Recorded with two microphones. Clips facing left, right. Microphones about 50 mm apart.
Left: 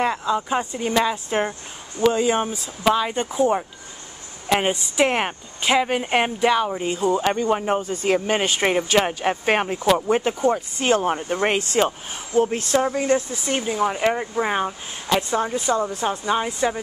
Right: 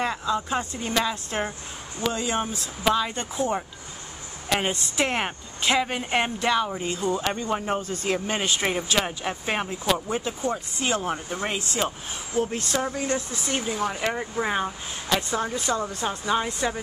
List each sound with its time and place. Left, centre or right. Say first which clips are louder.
0.0 s speech: left 4 dB; centre
13.0 s speech: left 6 dB; centre